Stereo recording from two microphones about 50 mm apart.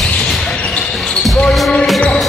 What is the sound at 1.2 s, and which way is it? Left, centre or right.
Basketball bounce, centre.